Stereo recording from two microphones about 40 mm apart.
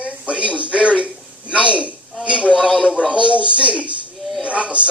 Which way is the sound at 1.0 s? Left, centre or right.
Right.